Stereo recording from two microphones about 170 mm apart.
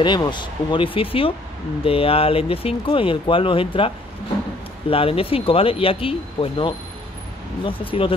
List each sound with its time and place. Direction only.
0.0 s speech: 25° left (ahead or behind)
7.8 s speech: 30° left (ahead or behind)